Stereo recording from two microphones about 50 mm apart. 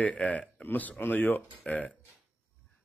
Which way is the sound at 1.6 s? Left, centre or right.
Left.